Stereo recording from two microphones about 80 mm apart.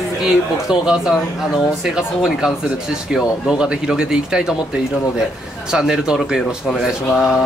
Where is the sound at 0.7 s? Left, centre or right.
Centre.